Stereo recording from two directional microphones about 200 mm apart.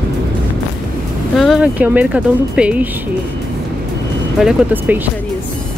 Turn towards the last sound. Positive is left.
turn(degrees=-5)  # may be behind; listen again after turning